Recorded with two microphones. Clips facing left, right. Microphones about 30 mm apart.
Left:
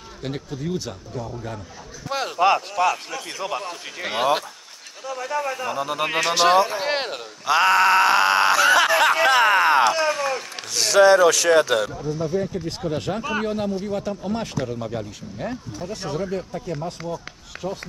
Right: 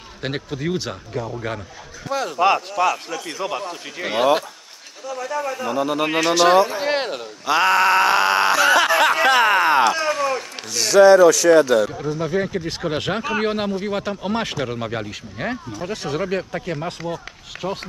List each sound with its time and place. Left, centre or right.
0.2 s speech: right
0.6 s speech: right
2.3 s speech: centre
2.7 s speech: centre
5.7 s speech: centre
6.3 s a sound: centre
10.8 s speech: centre
12.0 s speech: right
13.8 s speech: right